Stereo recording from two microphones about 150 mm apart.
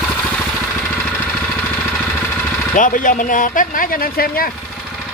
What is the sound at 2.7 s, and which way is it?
Speech, 60° left (ahead or behind).